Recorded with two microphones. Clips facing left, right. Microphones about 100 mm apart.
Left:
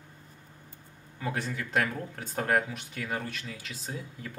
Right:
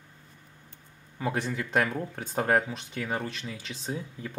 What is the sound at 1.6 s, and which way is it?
Speech, 20° right (ahead or behind).